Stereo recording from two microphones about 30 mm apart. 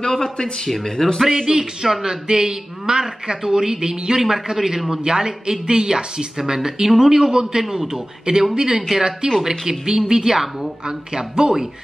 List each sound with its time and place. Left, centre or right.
0.1 s speech: centre
1.2 s a man's voice: centre
1.5 s speech: right
1.9 s a man's voice: centre
2.2 s speech: right
4.2 s a man's voice: centre
5.0 s speech: right